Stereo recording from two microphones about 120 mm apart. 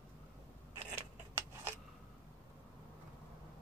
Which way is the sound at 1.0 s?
20° right (ahead or behind).